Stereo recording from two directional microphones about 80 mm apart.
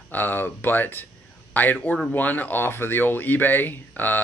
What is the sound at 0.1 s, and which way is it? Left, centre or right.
A man's voice, left.